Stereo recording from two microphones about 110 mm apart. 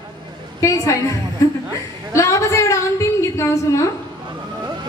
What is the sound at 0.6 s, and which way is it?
Speech, 30° left (ahead or behind).